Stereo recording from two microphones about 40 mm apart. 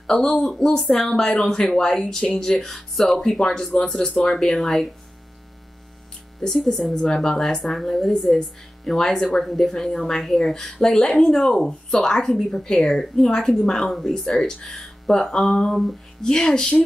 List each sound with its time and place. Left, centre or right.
0.2 s speech: centre
3.3 s speech: centre
6.4 s speech: centre
6.9 s speech: centre